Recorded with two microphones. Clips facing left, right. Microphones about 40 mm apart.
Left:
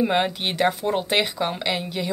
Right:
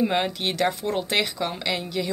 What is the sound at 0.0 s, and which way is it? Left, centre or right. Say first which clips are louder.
Speech: left 2 dB; centre.